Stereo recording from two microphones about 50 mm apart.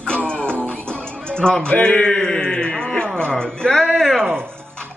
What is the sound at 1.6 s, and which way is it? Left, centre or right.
A man's voice, left.